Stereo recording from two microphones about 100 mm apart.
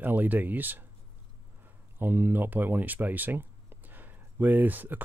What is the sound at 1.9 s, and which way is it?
Speech, 20° right (ahead or behind).